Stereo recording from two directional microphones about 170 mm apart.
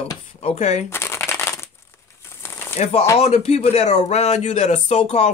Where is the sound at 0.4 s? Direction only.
40° left (ahead or behind).